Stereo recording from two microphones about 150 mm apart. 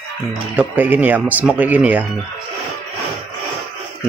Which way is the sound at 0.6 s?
10° right (ahead or behind).